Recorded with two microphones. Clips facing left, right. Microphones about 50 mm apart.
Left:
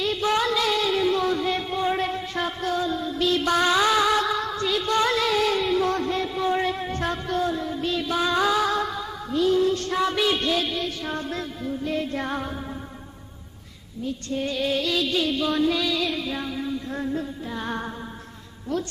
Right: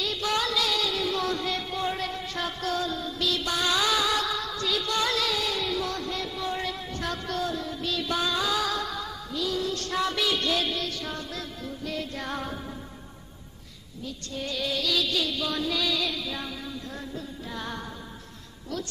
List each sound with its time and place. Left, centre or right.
0.0 s female singing: left
3.7 s music: left
9.9 s a sound: centre
10.5 s music: centre
11.1 s music: left
14.0 s music: left
16.9 s music: left